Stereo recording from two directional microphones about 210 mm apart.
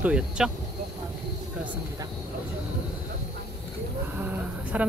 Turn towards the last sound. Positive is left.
turn(degrees=-5)  # may be behind; listen again after turning